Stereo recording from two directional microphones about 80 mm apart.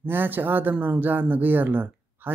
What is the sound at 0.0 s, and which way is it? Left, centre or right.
Speech, right.